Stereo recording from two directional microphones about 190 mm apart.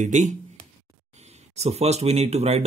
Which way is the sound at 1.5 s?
35° right (ahead or behind).